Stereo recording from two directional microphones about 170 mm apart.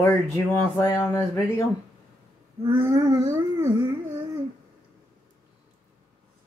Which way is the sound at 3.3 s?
15° right (ahead or behind).